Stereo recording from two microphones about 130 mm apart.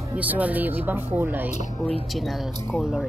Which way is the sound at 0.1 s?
10° right (ahead or behind).